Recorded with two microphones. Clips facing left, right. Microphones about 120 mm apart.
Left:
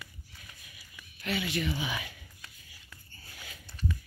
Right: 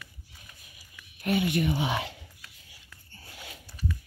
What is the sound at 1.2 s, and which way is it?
Speech, 50° right (ahead or behind).